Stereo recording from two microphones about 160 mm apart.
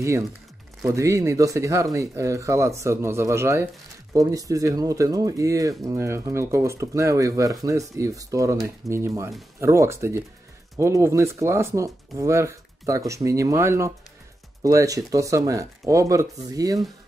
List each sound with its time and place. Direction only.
0.8 s speech: 20° right (ahead or behind)